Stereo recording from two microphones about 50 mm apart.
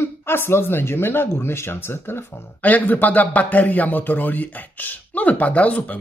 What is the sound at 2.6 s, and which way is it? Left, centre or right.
Speech, left.